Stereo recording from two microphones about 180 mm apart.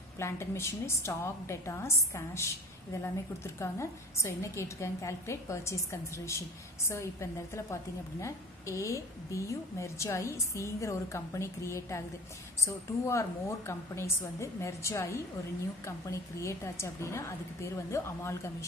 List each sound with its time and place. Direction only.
0.2 s a woman's voice: 15° left (ahead or behind)